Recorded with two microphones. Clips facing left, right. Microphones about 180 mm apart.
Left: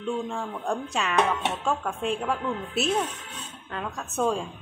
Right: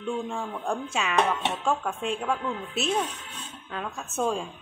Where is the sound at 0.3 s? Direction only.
Centre (ahead or behind).